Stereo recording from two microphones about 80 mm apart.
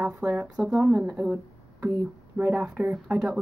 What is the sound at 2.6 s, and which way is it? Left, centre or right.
Speech, centre.